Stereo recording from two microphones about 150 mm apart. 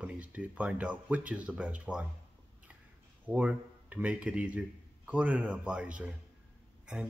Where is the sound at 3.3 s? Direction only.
10° right (ahead or behind).